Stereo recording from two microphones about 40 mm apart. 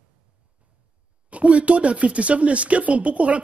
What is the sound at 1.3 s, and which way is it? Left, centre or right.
Speech, right.